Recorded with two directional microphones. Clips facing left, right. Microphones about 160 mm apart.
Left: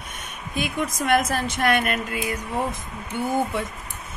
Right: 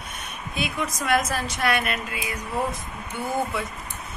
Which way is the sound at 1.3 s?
50° left (ahead or behind).